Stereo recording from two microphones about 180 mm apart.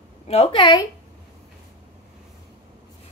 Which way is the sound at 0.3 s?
35° left (ahead or behind).